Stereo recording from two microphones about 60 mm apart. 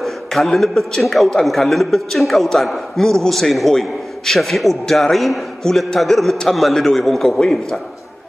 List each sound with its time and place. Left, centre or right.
0.0 s a man's voice: centre